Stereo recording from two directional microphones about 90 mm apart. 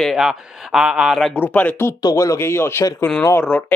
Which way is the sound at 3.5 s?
15° left (ahead or behind).